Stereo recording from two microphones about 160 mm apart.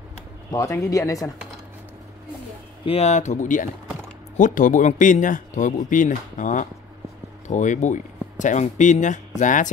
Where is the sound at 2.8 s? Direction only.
40° left (ahead or behind).